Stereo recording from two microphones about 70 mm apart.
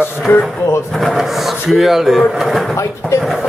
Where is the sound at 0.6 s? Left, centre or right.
Left.